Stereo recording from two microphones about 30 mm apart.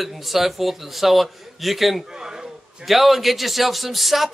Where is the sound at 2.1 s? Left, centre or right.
Right.